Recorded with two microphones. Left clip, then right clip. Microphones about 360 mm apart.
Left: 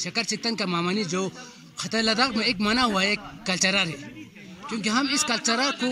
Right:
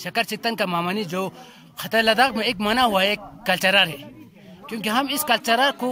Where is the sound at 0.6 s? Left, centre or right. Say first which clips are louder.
Right 2 dB; centre.